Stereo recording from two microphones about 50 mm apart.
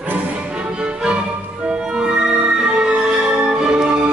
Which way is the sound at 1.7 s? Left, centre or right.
Centre.